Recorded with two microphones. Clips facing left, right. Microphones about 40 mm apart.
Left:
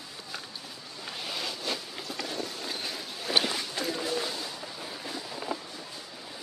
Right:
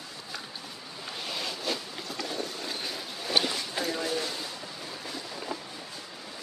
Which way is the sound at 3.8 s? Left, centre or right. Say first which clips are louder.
Right 1 dB; centre.